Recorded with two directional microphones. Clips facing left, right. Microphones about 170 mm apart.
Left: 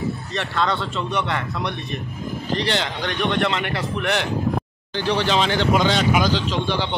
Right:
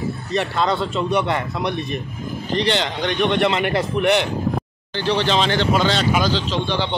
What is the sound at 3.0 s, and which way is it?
A man's voice, 15° right (ahead or behind).